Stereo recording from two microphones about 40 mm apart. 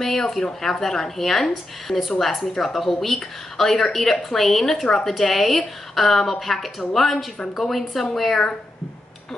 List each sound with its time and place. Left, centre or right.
0.0 s a woman's voice: centre